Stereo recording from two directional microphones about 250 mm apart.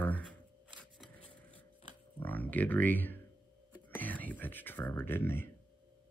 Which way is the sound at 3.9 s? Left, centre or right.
Centre.